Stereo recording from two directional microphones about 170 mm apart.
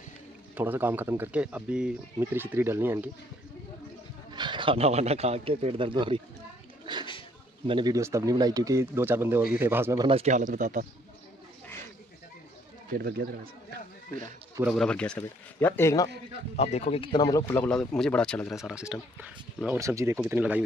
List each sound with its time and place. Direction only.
0.6 s speech: 10° right (ahead or behind)
4.3 s speech: 25° right (ahead or behind)
7.6 s speech: 25° right (ahead or behind)
10.0 s speech: 40° right (ahead or behind)
12.9 s speech: 65° right (ahead or behind)
14.6 s speech: centre (ahead or behind); by 16.1 s 15° left (ahead or behind)
16.5 s speech: 40° left (ahead or behind); by 17.6 s 20° left (ahead or behind)
17.6 s speech: 5° left (ahead or behind)